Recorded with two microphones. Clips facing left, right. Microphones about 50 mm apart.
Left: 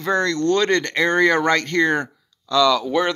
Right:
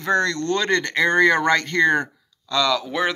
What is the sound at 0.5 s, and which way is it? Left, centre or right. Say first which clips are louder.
Speech: left 3 dB; centre.